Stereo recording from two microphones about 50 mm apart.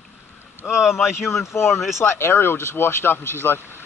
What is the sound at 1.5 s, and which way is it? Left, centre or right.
Speech, left.